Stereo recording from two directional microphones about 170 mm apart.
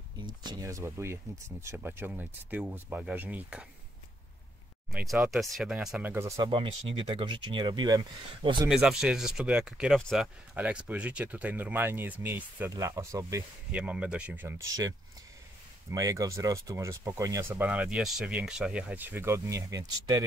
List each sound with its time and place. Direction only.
0.4 s speech: 20° right (ahead or behind); by 3.6 s 5° right (ahead or behind)
4.9 s speech: centre (ahead or behind); by 6.5 s 20° right (ahead or behind)
7.0 s speech: 30° right (ahead or behind)
8.6 s speech: centre (ahead or behind)
10.5 s speech: 10° right (ahead or behind)
13.7 s speech: 5° right (ahead or behind)
15.9 s speech: 20° right (ahead or behind)